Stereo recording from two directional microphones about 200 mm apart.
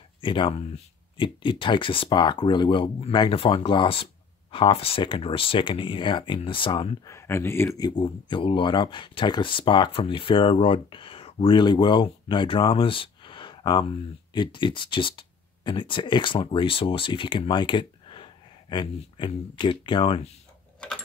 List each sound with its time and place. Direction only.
0.2 s speech: 25° left (ahead or behind)
7.1 s speech: 15° left (ahead or behind)